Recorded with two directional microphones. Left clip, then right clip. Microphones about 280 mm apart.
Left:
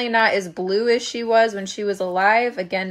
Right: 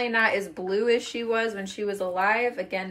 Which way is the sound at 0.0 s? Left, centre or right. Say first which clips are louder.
Left 5 dB; left.